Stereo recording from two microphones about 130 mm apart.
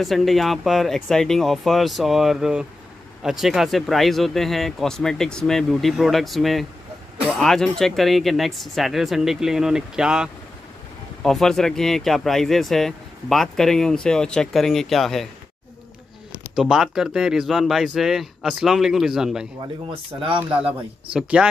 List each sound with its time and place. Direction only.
0.0 s speech: centre (ahead or behind)
16.5 s speech: 5° right (ahead or behind)
19.9 s speech: 45° right (ahead or behind)
20.3 s speech: 10° right (ahead or behind)